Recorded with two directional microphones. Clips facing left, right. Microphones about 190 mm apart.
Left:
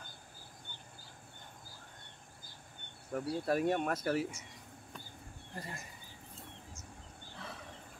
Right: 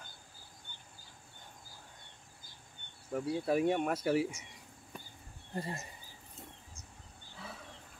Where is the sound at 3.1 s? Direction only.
5° right (ahead or behind).